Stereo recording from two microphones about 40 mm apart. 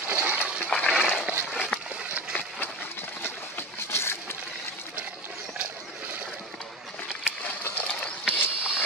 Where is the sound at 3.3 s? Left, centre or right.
Left.